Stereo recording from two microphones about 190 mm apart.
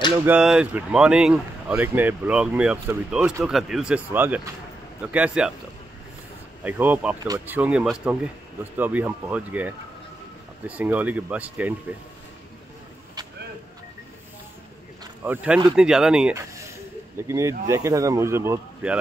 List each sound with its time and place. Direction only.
0.2 s speech: 5° right (ahead or behind)
6.6 s speech: 10° right (ahead or behind)
15.2 s speech: 10° right (ahead or behind)
17.3 s speech: 15° right (ahead or behind)